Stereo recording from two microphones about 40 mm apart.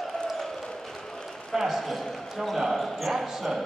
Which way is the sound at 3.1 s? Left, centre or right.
Centre.